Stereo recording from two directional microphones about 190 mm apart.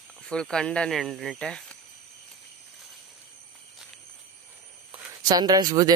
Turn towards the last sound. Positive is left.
turn(degrees=-20)  # may be behind; listen again after turning